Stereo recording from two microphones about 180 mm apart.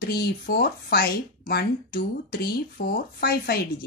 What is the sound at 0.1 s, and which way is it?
A woman's voice, 60° left (ahead or behind).